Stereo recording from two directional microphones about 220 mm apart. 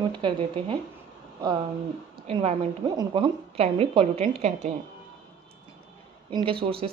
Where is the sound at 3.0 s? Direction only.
25° right (ahead or behind).